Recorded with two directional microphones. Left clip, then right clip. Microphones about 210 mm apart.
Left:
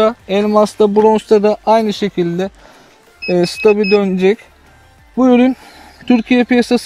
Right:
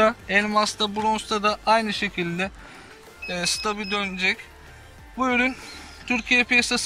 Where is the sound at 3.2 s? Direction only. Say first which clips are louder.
Left 13 dB; 35° left (ahead or behind).